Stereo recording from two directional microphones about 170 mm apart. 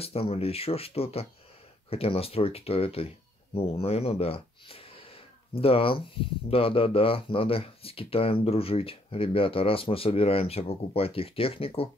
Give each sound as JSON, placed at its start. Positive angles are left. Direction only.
{"t": 0.0, "sound": "speech", "side_deg": 35}